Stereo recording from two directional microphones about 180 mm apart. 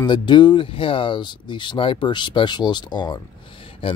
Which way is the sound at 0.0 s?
25° left (ahead or behind).